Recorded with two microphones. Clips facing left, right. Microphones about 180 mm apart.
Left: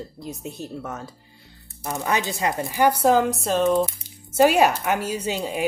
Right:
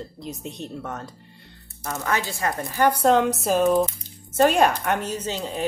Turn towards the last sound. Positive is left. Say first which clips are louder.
# left 2 dB
turn(degrees=10)  # may be behind; listen again after turning